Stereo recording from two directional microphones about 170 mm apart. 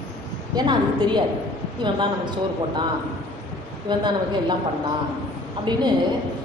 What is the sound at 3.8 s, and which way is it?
Speech, 25° right (ahead or behind).